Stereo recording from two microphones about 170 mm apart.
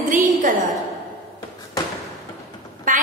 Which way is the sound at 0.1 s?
50° right (ahead or behind).